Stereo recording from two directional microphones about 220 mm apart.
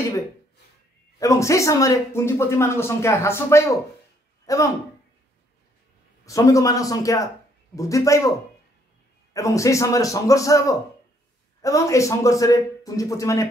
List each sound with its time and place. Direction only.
1.2 s speech: 15° left (ahead or behind)
6.2 s speech: 15° left (ahead or behind)
9.3 s speech: 15° left (ahead or behind)